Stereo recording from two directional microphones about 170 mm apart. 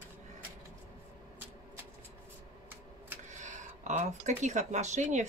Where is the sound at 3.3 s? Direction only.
45° right (ahead or behind).